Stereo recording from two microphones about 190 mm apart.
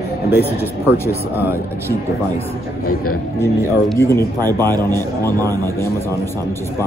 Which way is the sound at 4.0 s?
15° left (ahead or behind).